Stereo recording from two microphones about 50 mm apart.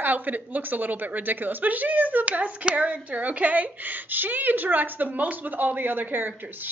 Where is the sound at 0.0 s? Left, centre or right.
Right.